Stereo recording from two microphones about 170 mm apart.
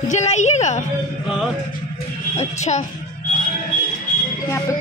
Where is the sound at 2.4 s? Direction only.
45° left (ahead or behind).